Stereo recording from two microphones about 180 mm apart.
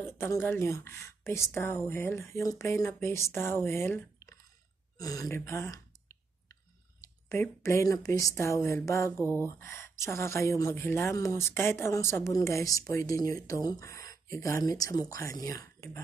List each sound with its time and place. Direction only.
0.0 s speech: 15° left (ahead or behind)